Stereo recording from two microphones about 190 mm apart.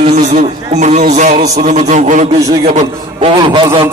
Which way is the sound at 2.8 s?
30° right (ahead or behind).